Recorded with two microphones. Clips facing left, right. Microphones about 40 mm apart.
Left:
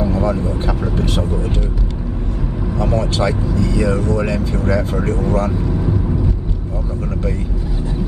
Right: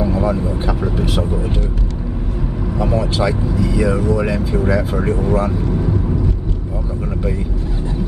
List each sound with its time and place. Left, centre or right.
0.0 s speech: centre
2.8 s speech: centre